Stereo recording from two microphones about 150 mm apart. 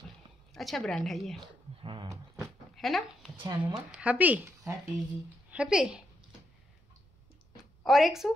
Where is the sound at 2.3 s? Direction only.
Centre (ahead or behind).